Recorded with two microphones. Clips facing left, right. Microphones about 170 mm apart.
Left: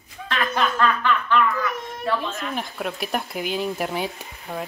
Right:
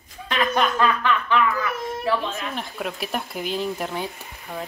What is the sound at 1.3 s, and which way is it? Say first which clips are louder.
A child's voice: left 1 dB; 5° right (ahead or behind).